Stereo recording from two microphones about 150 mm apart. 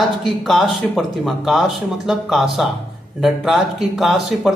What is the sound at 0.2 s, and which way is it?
Speech, centre (ahead or behind).